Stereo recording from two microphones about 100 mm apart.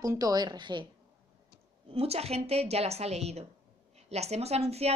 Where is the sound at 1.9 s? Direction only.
85° right.